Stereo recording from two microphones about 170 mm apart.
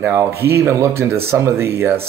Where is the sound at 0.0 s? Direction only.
15° right (ahead or behind).